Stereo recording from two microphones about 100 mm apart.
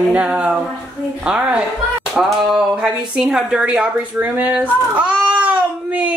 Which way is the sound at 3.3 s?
5° right (ahead or behind).